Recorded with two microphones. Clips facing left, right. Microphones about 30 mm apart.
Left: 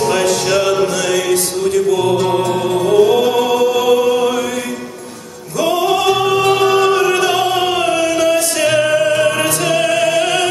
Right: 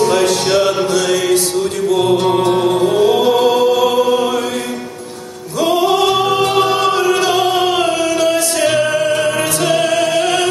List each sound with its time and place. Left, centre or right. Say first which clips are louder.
0.2 s music: right 1 dB; right
2.5 s music: even; right
6.0 s music: left 1 dB; centre
7.2 s opera: right 1 dB; right
8.0 s music: even; right